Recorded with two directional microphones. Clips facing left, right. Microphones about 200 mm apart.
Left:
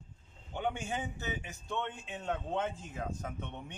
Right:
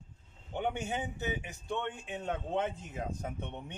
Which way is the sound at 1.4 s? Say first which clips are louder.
Right 2 dB; 15° right (ahead or behind).